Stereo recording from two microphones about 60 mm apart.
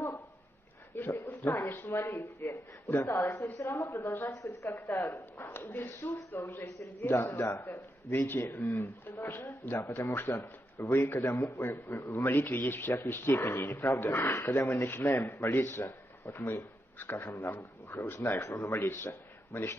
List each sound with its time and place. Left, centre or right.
0.9 s a sound: left
1.9 s a man's voice: left
3.3 s a man's voice: left
4.3 s speech: left
4.7 s a man's voice: left
9.9 s a man's voice: left
11.1 s a man's voice: left
12.4 s a man's voice: left